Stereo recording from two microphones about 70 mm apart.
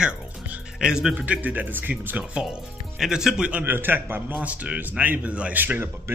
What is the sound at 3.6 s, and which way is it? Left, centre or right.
Speech, right.